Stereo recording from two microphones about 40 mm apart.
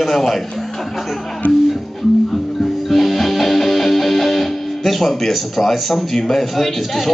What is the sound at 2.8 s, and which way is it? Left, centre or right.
Music, centre.